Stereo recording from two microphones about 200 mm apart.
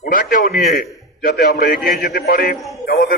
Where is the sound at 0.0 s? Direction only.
45° left (ahead or behind).